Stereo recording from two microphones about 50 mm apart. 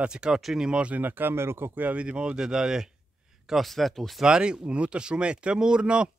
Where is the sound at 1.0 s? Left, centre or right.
Right.